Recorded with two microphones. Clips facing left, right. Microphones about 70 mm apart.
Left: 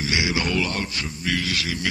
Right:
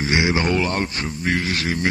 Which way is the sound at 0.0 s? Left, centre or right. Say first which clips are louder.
Right 4 dB; right.